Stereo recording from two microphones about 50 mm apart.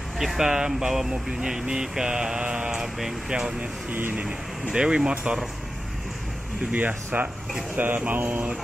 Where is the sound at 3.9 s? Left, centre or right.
Right.